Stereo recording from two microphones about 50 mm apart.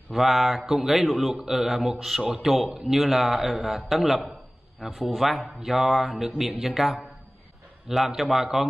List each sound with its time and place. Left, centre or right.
0.1 s a man's voice: centre